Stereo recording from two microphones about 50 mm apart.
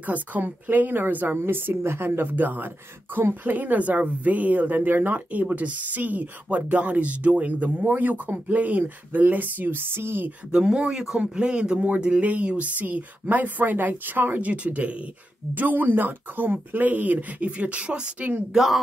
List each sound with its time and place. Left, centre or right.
0.0 s speech: right
10.5 s speech: centre; by 14.4 s right
14.4 s speech: right
18.5 s speech: centre